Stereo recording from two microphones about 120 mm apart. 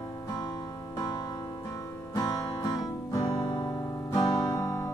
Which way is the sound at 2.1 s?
30° left (ahead or behind).